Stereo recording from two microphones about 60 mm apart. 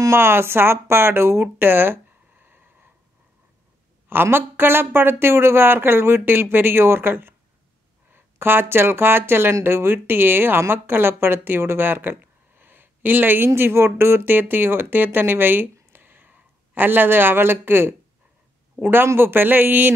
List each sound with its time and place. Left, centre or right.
0.1 s speech: right
2.3 s a sound: right
4.1 s speech: right